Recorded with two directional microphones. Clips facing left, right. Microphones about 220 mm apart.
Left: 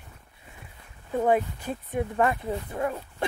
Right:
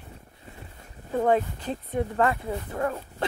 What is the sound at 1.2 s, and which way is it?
Speech, 10° left (ahead or behind).